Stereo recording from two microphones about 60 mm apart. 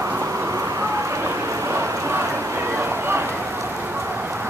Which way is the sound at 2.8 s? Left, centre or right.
Right.